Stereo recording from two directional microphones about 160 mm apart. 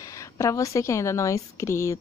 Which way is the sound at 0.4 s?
20° left (ahead or behind).